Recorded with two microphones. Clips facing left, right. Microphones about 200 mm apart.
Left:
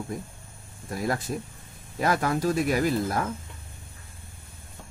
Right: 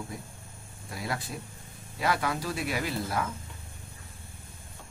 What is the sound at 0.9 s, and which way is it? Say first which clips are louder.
Speech: left 7 dB; 45° left (ahead or behind).